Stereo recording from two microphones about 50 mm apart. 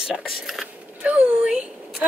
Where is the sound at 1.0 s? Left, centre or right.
Right.